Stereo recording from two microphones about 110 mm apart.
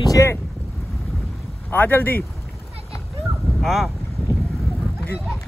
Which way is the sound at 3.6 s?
Centre (ahead or behind).